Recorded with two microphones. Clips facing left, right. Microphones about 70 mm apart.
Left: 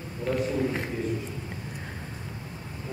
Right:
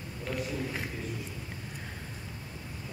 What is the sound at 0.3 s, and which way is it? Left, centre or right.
Speech, left.